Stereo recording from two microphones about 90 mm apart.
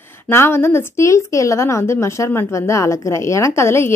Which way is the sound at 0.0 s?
25° left (ahead or behind).